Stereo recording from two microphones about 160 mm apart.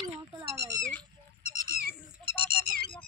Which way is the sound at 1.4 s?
60° right (ahead or behind).